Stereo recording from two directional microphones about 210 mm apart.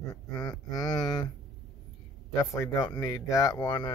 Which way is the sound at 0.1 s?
20° left (ahead or behind).